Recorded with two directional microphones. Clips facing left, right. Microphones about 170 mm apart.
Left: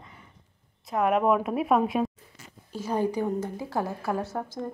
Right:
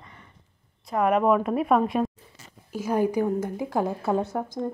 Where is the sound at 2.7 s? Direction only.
10° right (ahead or behind).